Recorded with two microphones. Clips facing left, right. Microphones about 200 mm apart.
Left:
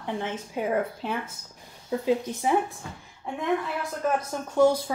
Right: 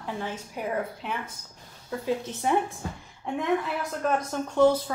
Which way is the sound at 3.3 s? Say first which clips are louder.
Right 1 dB; centre (ahead or behind).